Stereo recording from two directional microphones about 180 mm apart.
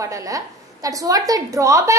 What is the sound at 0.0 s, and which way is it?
A woman's voice, 20° right (ahead or behind).